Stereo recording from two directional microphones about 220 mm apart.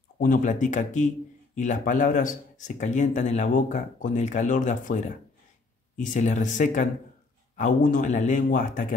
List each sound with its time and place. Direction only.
0.2 s speech: 35° left (ahead or behind)